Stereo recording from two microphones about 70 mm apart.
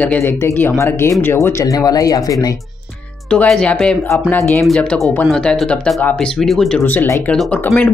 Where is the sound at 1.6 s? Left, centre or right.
Left.